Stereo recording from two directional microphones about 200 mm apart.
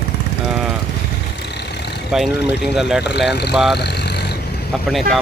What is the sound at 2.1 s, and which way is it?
Speech, 5° right (ahead or behind).